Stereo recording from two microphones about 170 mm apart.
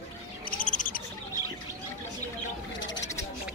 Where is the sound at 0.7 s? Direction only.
55° left (ahead or behind).